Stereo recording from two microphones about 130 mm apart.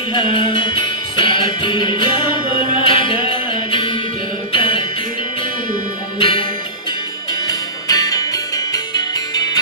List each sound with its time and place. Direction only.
0.1 s music: 40° left (ahead or behind)
6.1 s music: 40° left (ahead or behind)
7.4 s music: 30° left (ahead or behind)